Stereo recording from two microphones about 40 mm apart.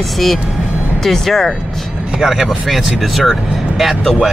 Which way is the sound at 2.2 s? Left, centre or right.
Centre.